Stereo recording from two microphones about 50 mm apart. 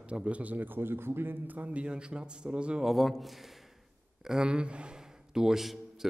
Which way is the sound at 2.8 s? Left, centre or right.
Centre.